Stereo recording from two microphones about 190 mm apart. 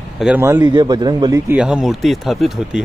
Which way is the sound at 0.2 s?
10° right (ahead or behind).